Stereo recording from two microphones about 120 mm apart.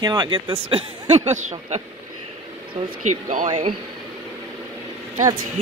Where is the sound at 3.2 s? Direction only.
90° right.